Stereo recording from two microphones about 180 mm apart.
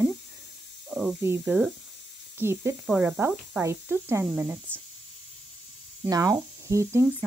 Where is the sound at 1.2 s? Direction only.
10° right (ahead or behind).